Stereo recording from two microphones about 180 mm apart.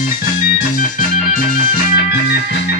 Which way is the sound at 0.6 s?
50° left (ahead or behind).